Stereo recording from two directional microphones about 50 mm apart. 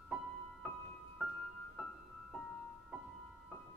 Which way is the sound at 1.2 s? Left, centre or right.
Centre.